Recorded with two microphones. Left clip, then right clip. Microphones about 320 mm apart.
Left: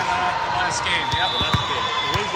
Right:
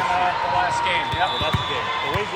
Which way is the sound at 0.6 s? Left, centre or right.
Centre.